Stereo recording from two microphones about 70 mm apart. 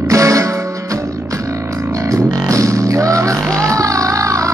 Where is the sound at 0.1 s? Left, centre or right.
Right.